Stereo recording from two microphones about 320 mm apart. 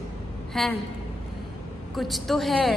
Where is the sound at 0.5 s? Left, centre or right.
Centre.